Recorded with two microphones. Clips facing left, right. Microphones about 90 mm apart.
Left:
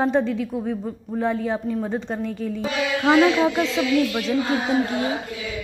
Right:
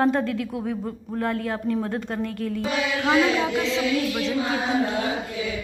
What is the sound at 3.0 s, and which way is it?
Speech, 25° left (ahead or behind).